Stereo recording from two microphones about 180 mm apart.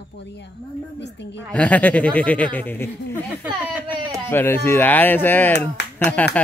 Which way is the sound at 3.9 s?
25° right (ahead or behind).